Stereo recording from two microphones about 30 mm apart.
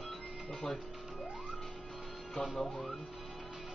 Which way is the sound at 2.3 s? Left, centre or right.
Centre.